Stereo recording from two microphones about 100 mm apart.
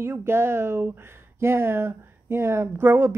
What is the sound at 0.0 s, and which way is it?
Speech, 25° right (ahead or behind).